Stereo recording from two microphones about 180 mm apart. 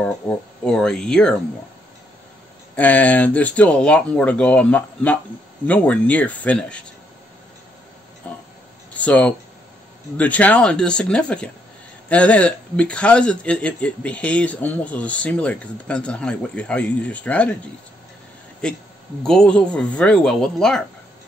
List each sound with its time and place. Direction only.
0.2 s speech: 5° left (ahead or behind)
2.7 s speech: 10° left (ahead or behind)
8.9 s speech: 5° left (ahead or behind)
18.6 s speech: 5° left (ahead or behind)